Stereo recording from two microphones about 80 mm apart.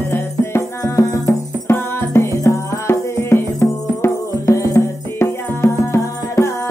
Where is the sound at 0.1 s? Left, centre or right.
Left.